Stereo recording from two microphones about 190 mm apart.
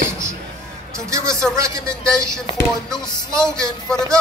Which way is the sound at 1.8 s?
5° left (ahead or behind).